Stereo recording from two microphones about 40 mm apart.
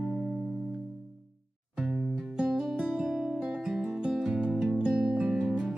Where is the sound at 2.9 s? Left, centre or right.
Right.